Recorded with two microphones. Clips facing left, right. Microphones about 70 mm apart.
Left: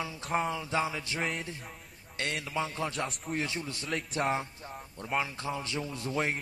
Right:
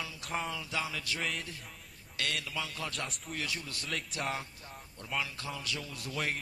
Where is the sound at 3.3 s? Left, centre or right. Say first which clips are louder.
Left 5 dB; left.